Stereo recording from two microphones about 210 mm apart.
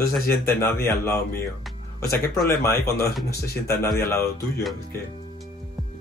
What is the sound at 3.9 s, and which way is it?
Speech, 15° left (ahead or behind).